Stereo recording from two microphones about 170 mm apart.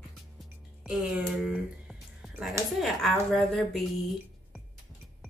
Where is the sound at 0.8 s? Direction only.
5° right (ahead or behind).